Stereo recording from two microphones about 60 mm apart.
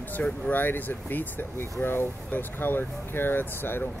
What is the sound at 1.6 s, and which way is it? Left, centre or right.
Speech, left.